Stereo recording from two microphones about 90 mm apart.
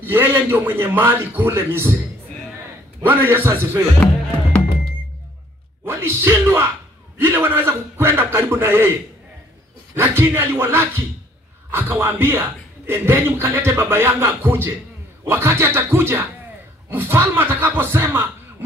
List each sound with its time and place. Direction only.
0.0 s a man's voice: 25° right (ahead or behind)
3.0 s a man's voice: 25° right (ahead or behind)
5.9 s a man's voice: 30° right (ahead or behind)
9.9 s a man's voice: 25° right (ahead or behind)